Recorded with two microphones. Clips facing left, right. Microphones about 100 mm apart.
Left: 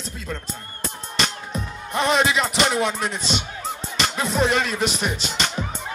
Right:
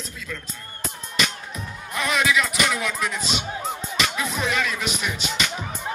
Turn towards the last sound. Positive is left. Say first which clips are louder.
# left 2 dB
turn(degrees=35)  # may be behind; listen again after turning